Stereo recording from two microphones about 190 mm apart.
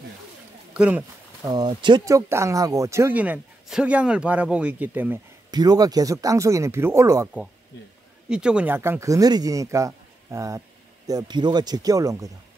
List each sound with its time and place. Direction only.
0.7 s speech: 5° right (ahead or behind)
1.5 s speech: 25° right (ahead or behind)
5.5 s speech: 20° right (ahead or behind)
8.3 s speech: 5° right (ahead or behind)